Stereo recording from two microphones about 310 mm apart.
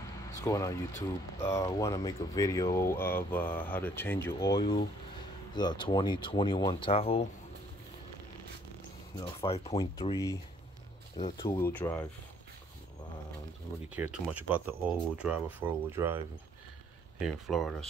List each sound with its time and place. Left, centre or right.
0.3 s speech: centre
9.2 s speech: centre
13.9 s speech: centre
17.2 s speech: centre